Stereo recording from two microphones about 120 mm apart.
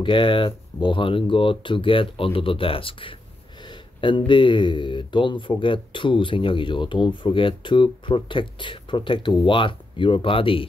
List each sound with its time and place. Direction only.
0.0 s speech: 45° left (ahead or behind)